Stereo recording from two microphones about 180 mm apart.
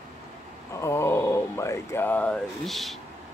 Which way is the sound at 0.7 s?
15° left (ahead or behind).